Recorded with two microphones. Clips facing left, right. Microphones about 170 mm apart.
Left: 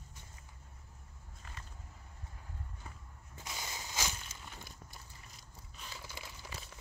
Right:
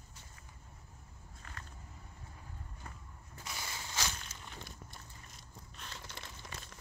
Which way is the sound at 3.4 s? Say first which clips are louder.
Even; 20° left (ahead or behind).